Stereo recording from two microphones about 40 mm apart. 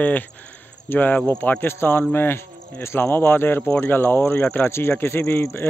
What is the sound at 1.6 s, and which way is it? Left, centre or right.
Speech, left.